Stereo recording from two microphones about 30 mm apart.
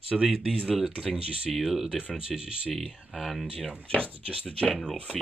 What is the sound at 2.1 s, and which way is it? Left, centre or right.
Speech, right.